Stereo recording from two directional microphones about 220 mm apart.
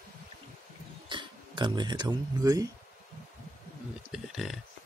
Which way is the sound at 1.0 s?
20° right (ahead or behind).